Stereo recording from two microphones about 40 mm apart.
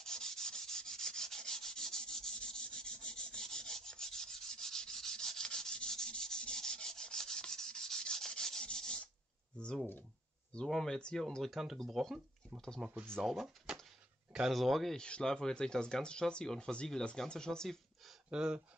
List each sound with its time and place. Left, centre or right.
0.0 s rub: centre
10.7 s speech: centre
11.5 s speech: centre
13.7 s a sound: centre
14.5 s speech: centre
15.0 s speech: left
18.3 s speech: right